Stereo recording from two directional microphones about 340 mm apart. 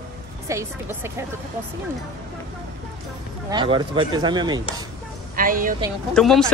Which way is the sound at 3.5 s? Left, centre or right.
Centre.